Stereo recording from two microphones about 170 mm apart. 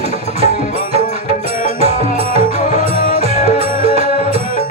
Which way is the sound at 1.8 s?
35° right (ahead or behind).